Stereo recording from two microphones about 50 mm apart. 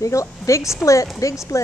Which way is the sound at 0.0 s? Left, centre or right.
Left.